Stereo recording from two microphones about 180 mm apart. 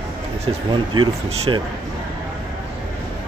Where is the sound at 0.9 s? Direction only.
25° right (ahead or behind).